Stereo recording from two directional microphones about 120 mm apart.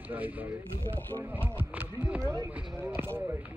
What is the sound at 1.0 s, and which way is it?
Speech, 15° left (ahead or behind).